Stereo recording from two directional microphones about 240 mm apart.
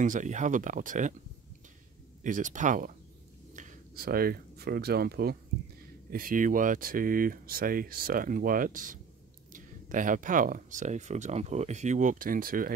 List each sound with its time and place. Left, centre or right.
0.0 s speech: right
2.2 s speech: right